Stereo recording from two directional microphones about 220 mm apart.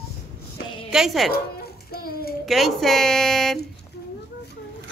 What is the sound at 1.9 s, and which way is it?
Speech, 45° left (ahead or behind).